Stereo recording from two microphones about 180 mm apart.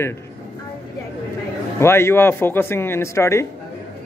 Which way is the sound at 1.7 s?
15° left (ahead or behind).